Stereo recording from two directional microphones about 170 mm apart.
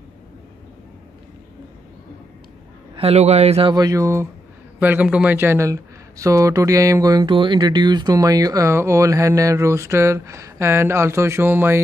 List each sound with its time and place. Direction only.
3.0 s a man's voice: 40° right (ahead or behind)
3.7 s speech: 20° right (ahead or behind)